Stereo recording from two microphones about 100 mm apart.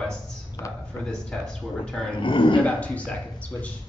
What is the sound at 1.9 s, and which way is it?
Speech, 10° left (ahead or behind).